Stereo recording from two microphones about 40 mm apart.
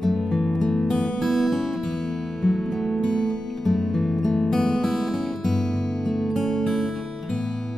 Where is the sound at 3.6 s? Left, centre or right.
Centre.